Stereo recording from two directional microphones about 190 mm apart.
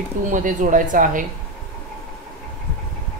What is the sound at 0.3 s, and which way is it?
Speech, 45° right (ahead or behind).